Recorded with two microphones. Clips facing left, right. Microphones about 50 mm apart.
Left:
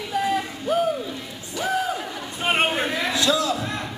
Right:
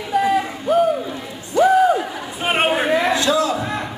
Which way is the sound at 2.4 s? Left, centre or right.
Centre.